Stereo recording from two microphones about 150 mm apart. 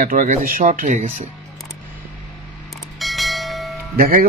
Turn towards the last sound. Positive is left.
turn(degrees=-75)  # may be behind; listen again after turning